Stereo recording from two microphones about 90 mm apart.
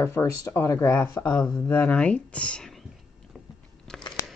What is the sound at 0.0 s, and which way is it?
Speech, 30° left (ahead or behind).